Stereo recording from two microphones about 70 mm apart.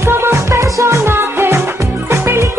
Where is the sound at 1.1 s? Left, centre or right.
Right.